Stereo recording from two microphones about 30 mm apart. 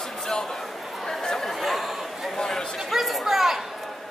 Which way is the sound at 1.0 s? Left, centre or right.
Centre.